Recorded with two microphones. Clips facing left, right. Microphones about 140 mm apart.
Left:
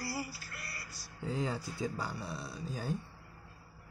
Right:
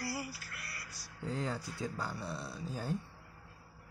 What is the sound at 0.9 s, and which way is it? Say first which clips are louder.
Speech: left 1 dB; 5° left (ahead or behind).